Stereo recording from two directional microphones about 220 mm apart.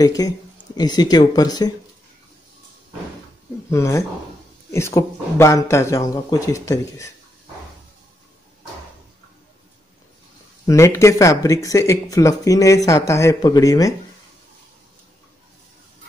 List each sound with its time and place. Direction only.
0.2 s speech: 15° left (ahead or behind)
3.7 s speech: 15° left (ahead or behind)
10.7 s speech: 15° left (ahead or behind)